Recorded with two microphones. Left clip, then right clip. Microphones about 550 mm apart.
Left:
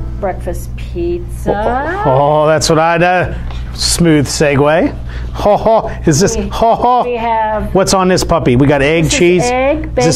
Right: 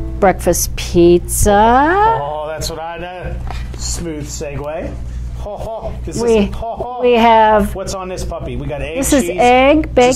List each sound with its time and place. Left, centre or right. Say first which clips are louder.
0.2 s a woman's voice: right 7 dB; right
2.0 s speech: left 7 dB; left
3.9 s speech: left 15 dB; left
7.1 s speech: right 5 dB; right
7.7 s speech: left 13 dB; left
9.4 s a woman's voice: right 3 dB; right